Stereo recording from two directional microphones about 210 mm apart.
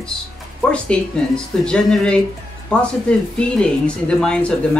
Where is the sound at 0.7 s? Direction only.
5° left (ahead or behind).